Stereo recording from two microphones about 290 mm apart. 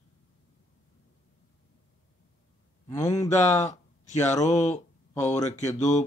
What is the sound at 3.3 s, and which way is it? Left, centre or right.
Speech, left.